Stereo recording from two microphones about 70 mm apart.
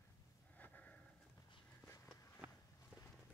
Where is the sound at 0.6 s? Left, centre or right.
Left.